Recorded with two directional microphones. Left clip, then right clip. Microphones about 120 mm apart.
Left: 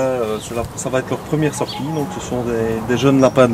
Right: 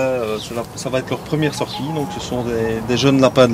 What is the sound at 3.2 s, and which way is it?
Speech, 40° right (ahead or behind).